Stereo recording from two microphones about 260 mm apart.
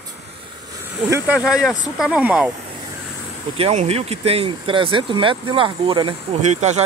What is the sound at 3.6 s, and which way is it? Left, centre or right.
Speech, right.